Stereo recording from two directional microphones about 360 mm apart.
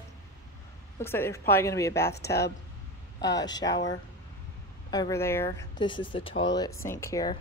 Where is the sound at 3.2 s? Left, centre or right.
Centre.